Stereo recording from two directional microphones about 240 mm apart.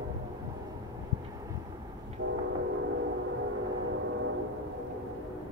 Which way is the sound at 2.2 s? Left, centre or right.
Right.